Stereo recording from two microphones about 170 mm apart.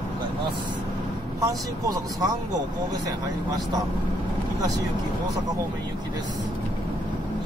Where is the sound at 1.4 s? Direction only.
20° right (ahead or behind).